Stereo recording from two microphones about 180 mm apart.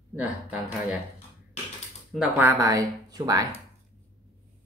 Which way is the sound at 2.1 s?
5° right (ahead or behind).